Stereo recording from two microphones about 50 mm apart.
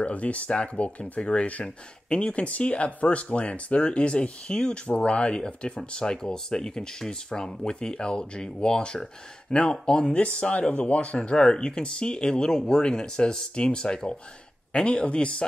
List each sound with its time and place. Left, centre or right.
0.0 s speech: left